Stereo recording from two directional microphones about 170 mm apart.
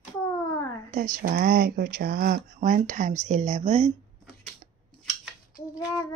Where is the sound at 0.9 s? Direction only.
55° right (ahead or behind); by 3.9 s 40° right (ahead or behind).